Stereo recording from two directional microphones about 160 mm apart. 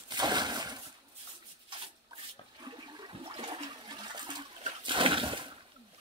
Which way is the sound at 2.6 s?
25° right (ahead or behind).